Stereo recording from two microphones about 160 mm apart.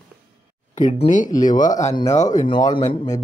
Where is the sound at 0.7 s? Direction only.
50° left (ahead or behind).